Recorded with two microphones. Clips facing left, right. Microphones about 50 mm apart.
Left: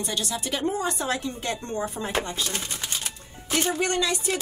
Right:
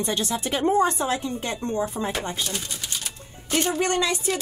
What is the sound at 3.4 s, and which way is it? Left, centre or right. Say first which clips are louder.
Music: right 1 dB; centre.